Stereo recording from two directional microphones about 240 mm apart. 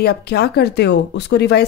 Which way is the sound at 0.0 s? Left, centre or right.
Left.